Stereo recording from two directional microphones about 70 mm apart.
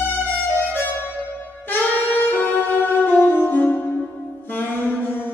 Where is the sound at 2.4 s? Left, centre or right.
Left.